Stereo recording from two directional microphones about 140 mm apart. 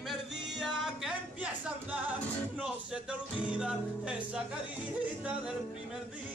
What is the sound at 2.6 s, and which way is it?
Music, 10° right (ahead or behind).